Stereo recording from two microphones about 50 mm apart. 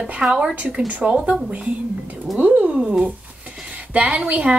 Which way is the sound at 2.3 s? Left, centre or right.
Right.